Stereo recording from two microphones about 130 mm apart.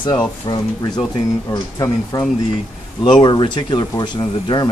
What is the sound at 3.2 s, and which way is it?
Speech, 40° left (ahead or behind).